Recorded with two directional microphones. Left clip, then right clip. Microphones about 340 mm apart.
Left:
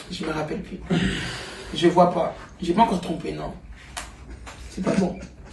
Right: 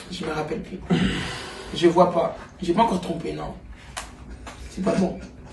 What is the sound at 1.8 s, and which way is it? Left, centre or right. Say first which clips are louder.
Speech: even; centre.